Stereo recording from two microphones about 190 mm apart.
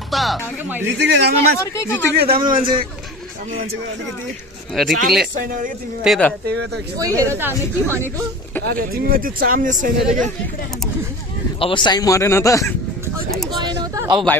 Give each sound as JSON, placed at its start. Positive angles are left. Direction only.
{"t": 0.1, "sound": "music", "side_deg": 0}
{"t": 0.8, "sound": "a man's voice", "side_deg": -60}
{"t": 1.6, "sound": "speech", "side_deg": 15}
{"t": 2.1, "sound": "speech", "side_deg": -50}
{"t": 4.7, "sound": "speech", "side_deg": 0}
{"t": 5.4, "sound": "speech", "side_deg": -50}
{"t": 6.0, "sound": "speech", "side_deg": 5}
{"t": 6.4, "sound": "a man's voice", "side_deg": -60}
{"t": 7.0, "sound": "a woman's voice", "side_deg": -15}
{"t": 8.6, "sound": "speech", "side_deg": -50}
{"t": 11.6, "sound": "speech", "side_deg": 25}
{"t": 13.6, "sound": "a sound", "side_deg": -20}